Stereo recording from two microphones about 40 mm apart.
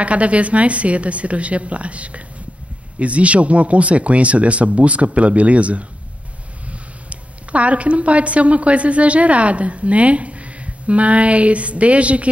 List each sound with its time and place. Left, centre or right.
0.0 s a woman's voice: right